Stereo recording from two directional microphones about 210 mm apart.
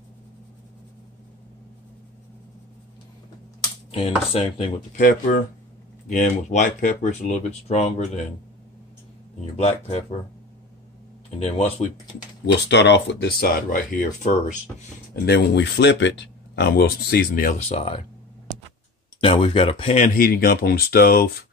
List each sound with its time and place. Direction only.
3.9 s dishes: 25° left (ahead or behind)
5.0 s speech: 40° left (ahead or behind)
9.6 s dishes: 30° left (ahead or behind)
11.2 s dishes: 30° left (ahead or behind)
12.6 s speech: 55° left (ahead or behind); by 14.3 s 40° left (ahead or behind)
15.2 s speech: 55° left (ahead or behind)
17.6 s dishes: 30° left (ahead or behind)
19.2 s dishes: 25° left (ahead or behind)
20.2 s speech: 45° left (ahead or behind)